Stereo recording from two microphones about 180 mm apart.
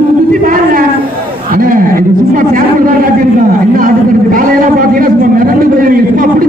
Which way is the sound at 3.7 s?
50° right (ahead or behind).